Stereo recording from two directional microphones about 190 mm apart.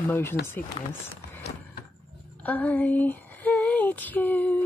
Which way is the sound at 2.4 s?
10° left (ahead or behind).